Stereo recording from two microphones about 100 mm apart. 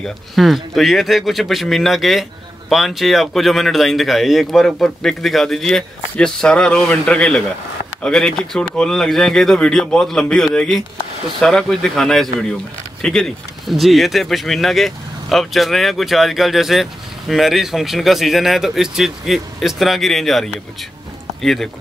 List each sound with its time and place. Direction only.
0.0 s speech: centre (ahead or behind)